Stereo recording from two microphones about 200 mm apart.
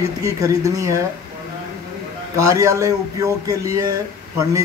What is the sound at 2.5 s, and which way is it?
Speech, 15° right (ahead or behind).